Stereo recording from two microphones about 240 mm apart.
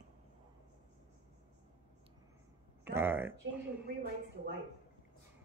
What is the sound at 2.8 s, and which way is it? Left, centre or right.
Speech, centre.